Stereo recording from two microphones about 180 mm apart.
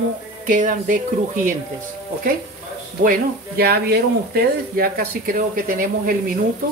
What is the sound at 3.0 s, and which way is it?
Speech, 55° right (ahead or behind).